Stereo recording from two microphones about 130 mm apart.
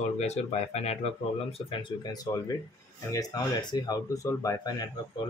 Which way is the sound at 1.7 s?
35° left (ahead or behind).